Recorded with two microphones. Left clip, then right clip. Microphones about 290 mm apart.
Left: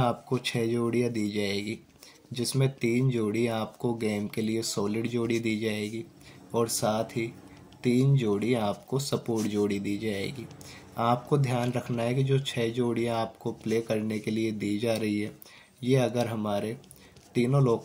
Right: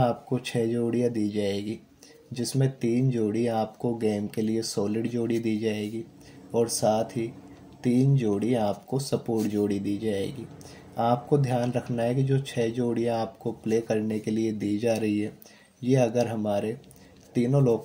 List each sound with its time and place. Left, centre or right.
0.0 s speech: centre